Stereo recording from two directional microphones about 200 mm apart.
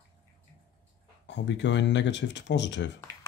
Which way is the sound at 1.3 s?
65° left (ahead or behind).